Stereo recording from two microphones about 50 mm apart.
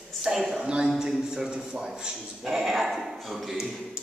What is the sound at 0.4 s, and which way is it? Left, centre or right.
Speech, centre.